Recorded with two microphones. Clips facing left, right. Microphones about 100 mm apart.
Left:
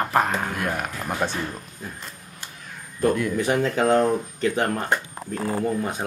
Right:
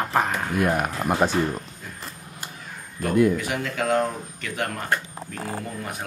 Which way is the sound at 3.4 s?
30° left (ahead or behind).